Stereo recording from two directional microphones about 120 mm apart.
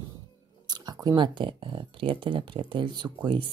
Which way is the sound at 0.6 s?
35° right (ahead or behind).